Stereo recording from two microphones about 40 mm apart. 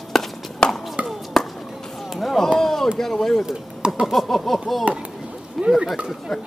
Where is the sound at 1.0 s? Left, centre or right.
Centre.